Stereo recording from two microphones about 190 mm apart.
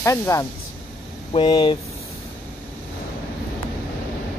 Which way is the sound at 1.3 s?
25° left (ahead or behind).